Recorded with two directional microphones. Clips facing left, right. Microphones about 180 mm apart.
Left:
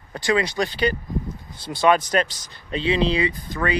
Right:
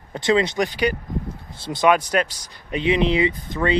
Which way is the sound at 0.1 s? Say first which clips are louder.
Right 3 dB; 25° right (ahead or behind).